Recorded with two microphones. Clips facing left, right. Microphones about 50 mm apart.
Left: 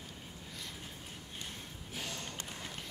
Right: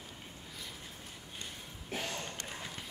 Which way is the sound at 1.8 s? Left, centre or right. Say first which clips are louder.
Right 5 dB; right.